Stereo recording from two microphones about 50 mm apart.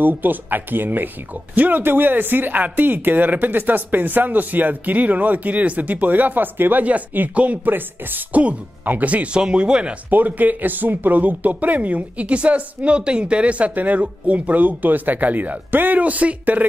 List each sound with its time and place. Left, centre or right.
0.0 s speech: right
10.0 s speech: right